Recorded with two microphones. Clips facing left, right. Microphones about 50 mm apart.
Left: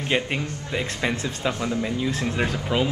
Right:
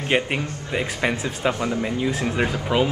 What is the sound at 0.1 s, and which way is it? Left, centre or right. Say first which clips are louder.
A man's voice: right 3 dB; right.